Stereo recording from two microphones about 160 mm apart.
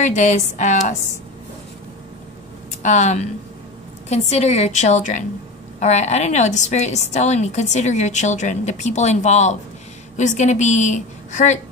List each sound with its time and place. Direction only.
0.0 s a woman's voice: 45° left (ahead or behind)
2.8 s a woman's voice: 45° left (ahead or behind)